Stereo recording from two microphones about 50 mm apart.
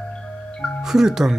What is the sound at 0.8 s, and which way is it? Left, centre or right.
Speech, centre.